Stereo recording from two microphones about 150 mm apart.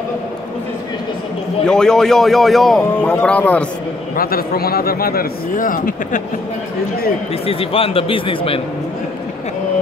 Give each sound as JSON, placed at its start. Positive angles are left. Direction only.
{"t": 1.7, "sound": "a man's voice", "side_deg": 5}
{"t": 2.8, "sound": "speech", "side_deg": 10}
{"t": 4.2, "sound": "a man's voice", "side_deg": 90}
{"t": 7.4, "sound": "speech", "side_deg": 40}